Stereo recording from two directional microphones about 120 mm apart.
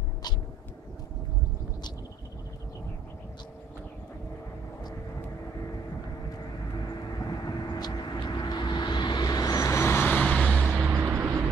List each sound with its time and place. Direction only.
7.2 s vehicle: 30° left (ahead or behind); by 10.5 s 10° left (ahead or behind)
10.5 s vehicle: 10° right (ahead or behind)
10.9 s vehicle: 20° right (ahead or behind)